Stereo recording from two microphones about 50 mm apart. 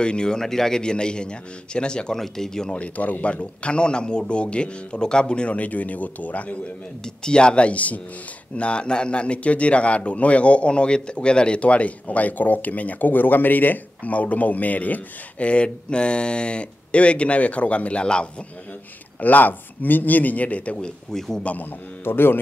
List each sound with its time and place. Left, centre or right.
0.0 s a man's voice: centre
2.7 s a man's voice: left
7.2 s a man's voice: centre
19.1 s a man's voice: left
21.1 s a man's voice: centre
21.4 s a man's voice: left
22.0 s speech: left